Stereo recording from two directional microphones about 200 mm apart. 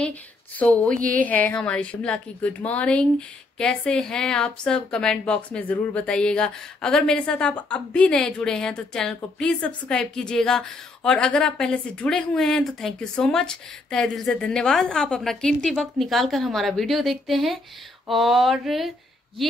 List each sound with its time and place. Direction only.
0.0 s speech: 10° left (ahead or behind)
0.9 s speech: 45° right (ahead or behind)
1.2 s a woman's voice: 10° left (ahead or behind)